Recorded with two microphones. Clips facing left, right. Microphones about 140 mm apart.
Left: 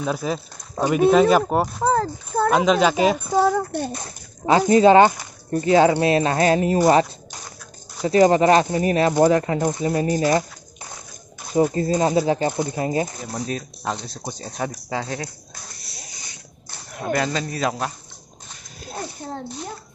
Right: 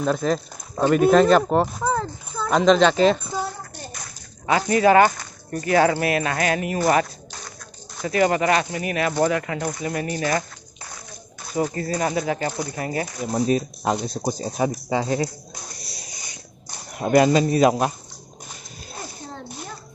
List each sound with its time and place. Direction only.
0.0 s speech: 5° left (ahead or behind)
1.9 s a sound: 40° left (ahead or behind)
2.5 s speech: 5° left (ahead or behind)
3.3 s a sound: 80° left
3.9 s a sound: 30° left (ahead or behind)
5.5 s speech: 25° left (ahead or behind)
8.0 s speech: 30° left (ahead or behind)
11.5 s speech: 20° left (ahead or behind)
13.3 s speech: 15° right (ahead or behind)
16.7 s speech: 15° right (ahead or behind)